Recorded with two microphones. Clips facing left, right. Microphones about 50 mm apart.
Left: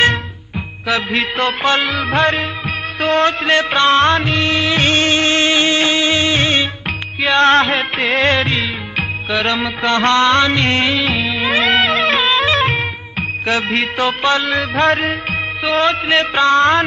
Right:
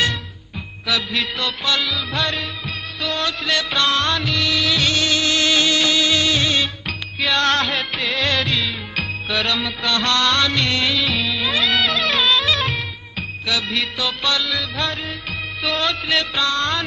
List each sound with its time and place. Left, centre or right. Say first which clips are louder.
0.8 s music: left 5 dB; left
15.6 s music: left 7 dB; left